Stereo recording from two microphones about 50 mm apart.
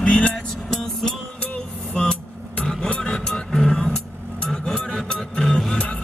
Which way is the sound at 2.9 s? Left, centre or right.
Centre.